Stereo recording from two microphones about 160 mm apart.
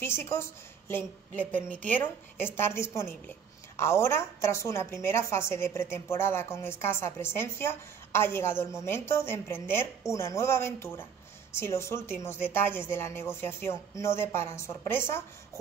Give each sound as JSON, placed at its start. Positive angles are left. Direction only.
{"t": 0.0, "sound": "a woman's voice", "side_deg": 15}